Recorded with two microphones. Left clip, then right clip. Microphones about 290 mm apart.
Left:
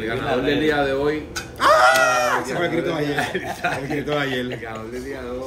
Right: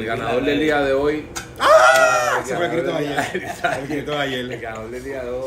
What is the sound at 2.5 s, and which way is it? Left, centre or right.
Speech, centre.